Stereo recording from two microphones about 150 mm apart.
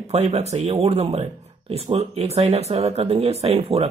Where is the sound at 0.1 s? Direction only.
45° right (ahead or behind).